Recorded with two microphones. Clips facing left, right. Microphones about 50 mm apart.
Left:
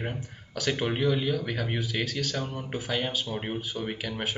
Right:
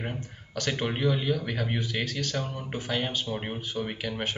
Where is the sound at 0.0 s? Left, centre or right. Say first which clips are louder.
Left 1 dB; centre.